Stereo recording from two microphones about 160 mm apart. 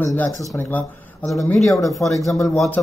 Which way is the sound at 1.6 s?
Centre (ahead or behind).